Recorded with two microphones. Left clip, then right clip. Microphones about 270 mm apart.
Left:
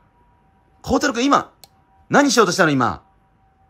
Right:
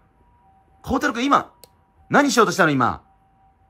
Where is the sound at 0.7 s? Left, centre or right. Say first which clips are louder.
Left 3 dB; centre.